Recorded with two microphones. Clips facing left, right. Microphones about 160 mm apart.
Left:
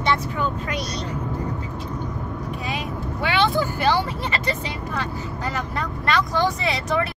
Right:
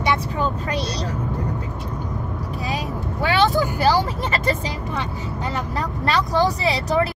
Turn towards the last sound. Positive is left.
turn(degrees=-35)  # may be behind; listen again after turning